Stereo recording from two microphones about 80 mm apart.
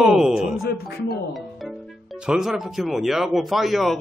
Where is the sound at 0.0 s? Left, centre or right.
Centre.